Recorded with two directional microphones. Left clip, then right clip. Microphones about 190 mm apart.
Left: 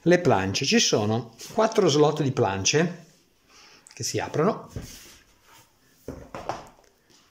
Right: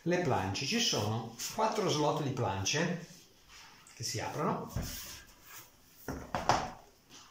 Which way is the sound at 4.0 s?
60° left (ahead or behind).